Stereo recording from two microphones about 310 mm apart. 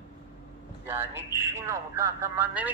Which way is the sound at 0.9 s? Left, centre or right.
Centre.